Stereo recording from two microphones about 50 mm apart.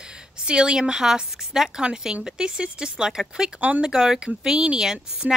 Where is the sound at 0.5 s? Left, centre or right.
Centre.